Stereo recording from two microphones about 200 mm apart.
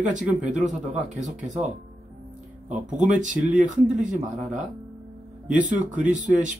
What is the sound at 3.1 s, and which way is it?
Speech, 40° right (ahead or behind).